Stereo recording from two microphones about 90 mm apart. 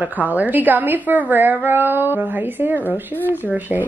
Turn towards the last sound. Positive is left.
turn(degrees=-20)  # may be behind; listen again after turning